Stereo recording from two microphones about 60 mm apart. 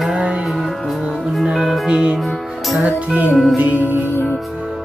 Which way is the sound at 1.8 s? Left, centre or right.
Centre.